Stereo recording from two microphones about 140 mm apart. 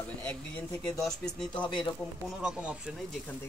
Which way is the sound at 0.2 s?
10° left (ahead or behind).